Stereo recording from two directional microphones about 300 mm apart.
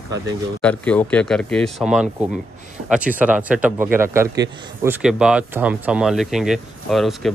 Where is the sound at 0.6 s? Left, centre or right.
Centre.